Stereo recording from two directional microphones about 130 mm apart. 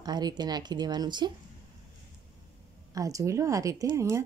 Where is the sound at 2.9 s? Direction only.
25° right (ahead or behind).